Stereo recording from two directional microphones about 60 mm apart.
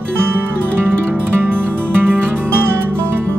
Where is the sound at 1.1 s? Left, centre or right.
Right.